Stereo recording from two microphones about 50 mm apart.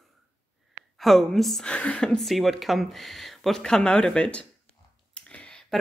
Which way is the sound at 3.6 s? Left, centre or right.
Centre.